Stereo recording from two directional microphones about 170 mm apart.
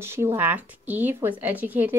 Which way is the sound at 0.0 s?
15° right (ahead or behind).